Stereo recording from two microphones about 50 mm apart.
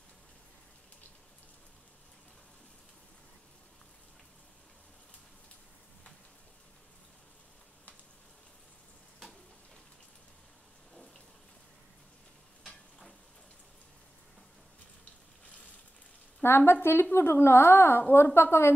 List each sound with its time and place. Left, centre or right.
16.4 s a woman's voice: left